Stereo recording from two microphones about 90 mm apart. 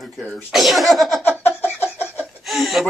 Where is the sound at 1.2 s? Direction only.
25° left (ahead or behind).